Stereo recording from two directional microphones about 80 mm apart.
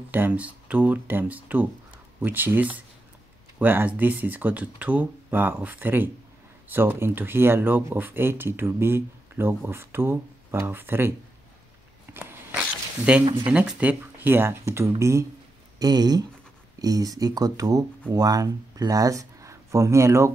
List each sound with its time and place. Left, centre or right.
0.1 s speech: right
12.1 s a sound: right
12.5 s a sound: centre
13.2 s speech: right
13.5 s speech: centre; by 15.2 s right
15.8 s speech: right